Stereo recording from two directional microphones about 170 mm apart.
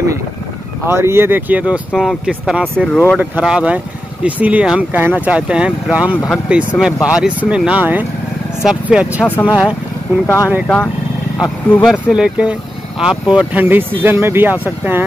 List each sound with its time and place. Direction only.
0.8 s speech: 15° right (ahead or behind)
2.9 s speech: 10° left (ahead or behind)
3.2 s speech: 5° right (ahead or behind)
9.2 s speech: 10° left (ahead or behind)
11.7 s speech: centre (ahead or behind)